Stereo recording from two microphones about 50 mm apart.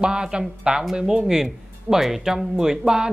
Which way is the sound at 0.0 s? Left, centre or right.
Centre.